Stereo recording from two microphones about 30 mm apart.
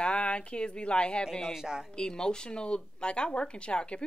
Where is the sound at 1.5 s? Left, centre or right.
Centre.